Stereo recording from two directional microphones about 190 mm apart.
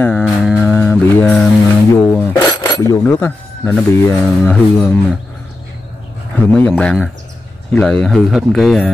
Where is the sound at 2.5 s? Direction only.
15° left (ahead or behind).